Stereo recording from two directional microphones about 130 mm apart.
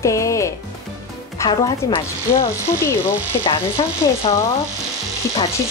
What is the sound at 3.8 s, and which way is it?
Speech, 35° left (ahead or behind).